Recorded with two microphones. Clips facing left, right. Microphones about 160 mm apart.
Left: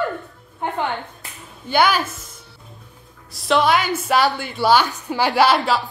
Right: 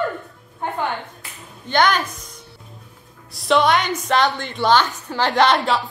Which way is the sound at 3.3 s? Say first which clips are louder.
Right 1 dB; centre (ahead or behind).